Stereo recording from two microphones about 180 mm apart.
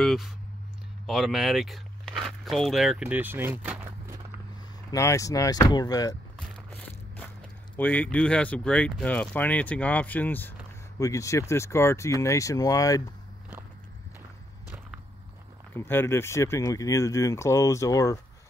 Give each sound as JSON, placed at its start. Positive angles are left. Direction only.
{"t": 0.0, "sound": "speech", "side_deg": 0}
{"t": 4.9, "sound": "speech", "side_deg": 15}
{"t": 7.7, "sound": "speech", "side_deg": 10}
{"t": 15.7, "sound": "speech", "side_deg": 10}